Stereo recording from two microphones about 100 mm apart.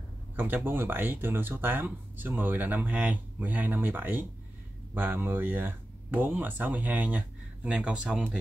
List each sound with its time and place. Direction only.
0.4 s speech: 20° right (ahead or behind)